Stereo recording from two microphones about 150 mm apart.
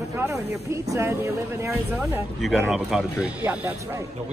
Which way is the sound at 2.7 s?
5° right (ahead or behind).